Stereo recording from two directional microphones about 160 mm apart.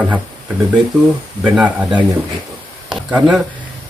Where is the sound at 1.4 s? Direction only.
10° right (ahead or behind).